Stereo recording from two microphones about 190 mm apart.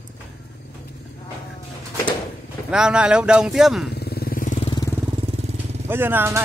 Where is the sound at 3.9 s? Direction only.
55° left (ahead or behind); by 4.7 s 40° left (ahead or behind).